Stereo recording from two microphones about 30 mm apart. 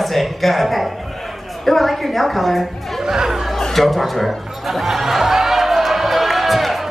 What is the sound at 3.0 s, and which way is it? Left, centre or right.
Speech, centre.